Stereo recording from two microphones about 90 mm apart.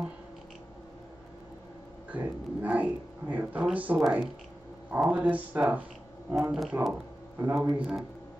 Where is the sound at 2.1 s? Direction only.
20° right (ahead or behind).